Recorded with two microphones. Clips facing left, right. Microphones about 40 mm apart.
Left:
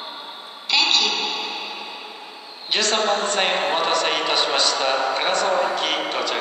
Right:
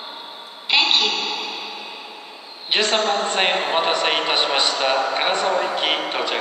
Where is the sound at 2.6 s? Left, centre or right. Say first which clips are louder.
Right 1 dB; right.